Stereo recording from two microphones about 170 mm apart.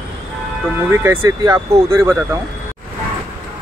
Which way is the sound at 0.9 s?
15° right (ahead or behind).